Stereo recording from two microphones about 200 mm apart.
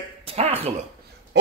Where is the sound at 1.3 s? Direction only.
65° right (ahead or behind).